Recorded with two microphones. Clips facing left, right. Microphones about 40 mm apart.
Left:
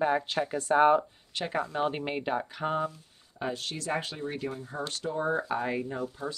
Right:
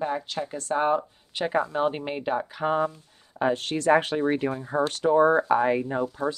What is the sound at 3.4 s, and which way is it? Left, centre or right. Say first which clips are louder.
Speech: right 9 dB; right.